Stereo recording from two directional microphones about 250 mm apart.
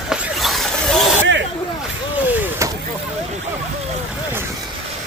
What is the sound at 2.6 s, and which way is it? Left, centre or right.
Vehicle, centre.